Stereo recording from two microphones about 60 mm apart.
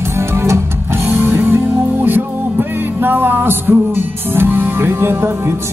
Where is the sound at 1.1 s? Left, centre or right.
Right.